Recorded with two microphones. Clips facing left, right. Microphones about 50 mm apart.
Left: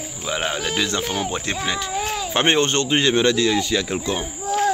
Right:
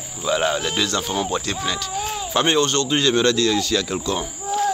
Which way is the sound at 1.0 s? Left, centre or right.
Left.